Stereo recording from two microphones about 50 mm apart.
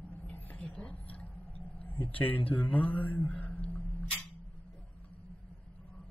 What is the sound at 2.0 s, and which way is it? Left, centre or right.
Speech, left.